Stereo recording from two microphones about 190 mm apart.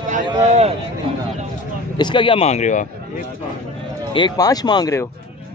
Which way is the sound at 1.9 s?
25° left (ahead or behind).